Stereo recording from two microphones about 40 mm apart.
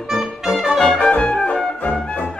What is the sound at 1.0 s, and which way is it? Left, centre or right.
Music, left.